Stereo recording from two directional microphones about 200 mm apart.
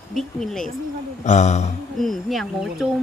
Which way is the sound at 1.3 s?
35° left (ahead or behind).